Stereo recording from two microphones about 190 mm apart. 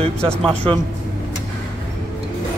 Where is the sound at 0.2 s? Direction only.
5° left (ahead or behind).